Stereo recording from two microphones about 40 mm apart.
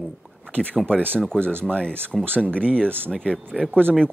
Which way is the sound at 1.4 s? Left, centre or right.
Right.